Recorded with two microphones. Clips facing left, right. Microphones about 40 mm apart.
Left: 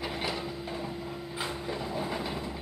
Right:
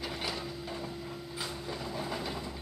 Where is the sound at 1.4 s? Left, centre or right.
Centre.